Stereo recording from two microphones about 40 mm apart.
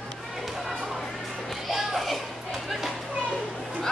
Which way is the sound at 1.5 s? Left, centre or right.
Centre.